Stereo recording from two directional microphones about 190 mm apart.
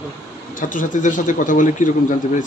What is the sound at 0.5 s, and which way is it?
Speech, 45° left (ahead or behind).